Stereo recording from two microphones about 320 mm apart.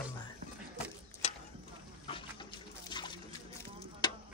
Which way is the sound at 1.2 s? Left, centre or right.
Left.